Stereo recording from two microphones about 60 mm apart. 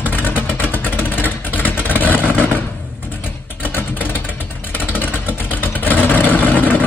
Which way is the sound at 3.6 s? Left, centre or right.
Left.